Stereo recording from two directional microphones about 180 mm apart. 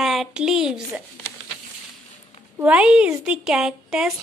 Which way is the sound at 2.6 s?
5° right (ahead or behind).